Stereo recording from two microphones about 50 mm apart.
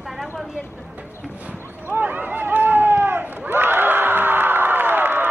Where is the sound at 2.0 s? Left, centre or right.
Right.